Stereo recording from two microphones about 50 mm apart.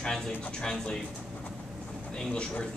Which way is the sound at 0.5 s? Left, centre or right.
Centre.